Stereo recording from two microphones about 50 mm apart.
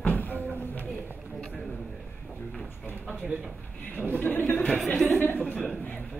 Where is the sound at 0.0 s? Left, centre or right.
Left.